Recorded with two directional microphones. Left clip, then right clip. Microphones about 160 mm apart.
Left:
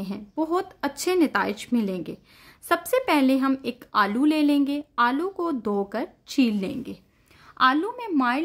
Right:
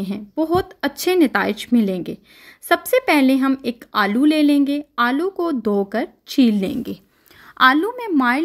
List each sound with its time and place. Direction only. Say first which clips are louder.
0.0 s a woman's voice: right 6 dB; 20° right (ahead or behind)